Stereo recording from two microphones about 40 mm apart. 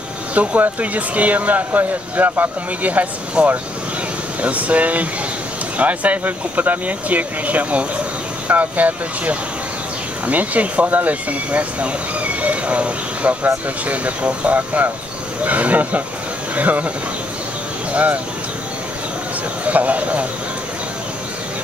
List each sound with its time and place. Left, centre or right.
0.3 s speech: right
3.4 s speech: right
4.4 s speech: right
17.9 s speech: right
19.6 s speech: right